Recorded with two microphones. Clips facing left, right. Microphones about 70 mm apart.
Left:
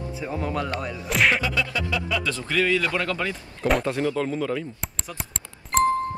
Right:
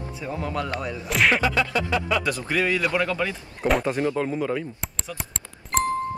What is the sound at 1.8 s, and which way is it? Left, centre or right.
Speech, right.